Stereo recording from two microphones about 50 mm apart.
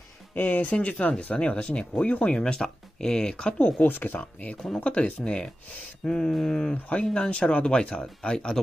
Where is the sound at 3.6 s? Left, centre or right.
Left.